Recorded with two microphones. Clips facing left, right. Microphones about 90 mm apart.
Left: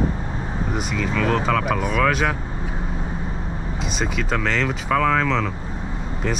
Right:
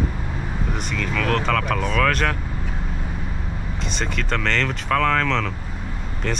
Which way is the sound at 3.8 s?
5° left (ahead or behind).